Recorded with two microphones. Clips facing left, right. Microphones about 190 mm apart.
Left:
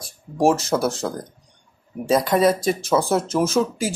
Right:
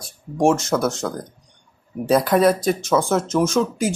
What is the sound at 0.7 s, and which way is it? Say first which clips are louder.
Speech: right 1 dB; 30° left (ahead or behind).